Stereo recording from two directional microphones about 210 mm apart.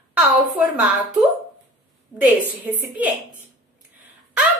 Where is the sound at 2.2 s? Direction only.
10° right (ahead or behind).